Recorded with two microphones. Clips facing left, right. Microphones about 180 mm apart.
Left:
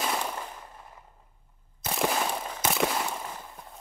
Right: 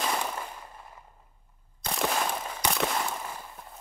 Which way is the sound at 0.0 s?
5° left (ahead or behind).